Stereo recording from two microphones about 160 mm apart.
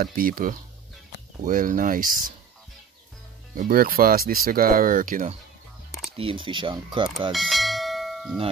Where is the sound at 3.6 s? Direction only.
65° right (ahead or behind).